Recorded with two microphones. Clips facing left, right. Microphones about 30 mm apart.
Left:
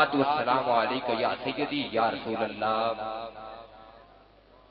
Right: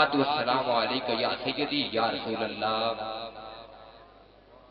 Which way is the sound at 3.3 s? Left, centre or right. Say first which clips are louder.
Left 1 dB; right.